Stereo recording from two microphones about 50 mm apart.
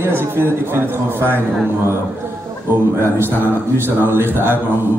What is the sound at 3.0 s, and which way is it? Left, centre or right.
A man's voice, right.